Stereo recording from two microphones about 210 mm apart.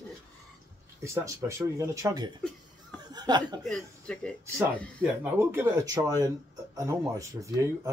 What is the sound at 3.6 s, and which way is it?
Speech, 5° left (ahead or behind).